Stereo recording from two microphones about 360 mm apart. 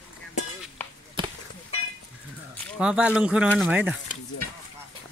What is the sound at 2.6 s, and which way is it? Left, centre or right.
Speech, centre.